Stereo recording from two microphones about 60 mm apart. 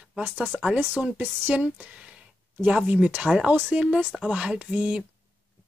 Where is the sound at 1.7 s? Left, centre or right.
Right.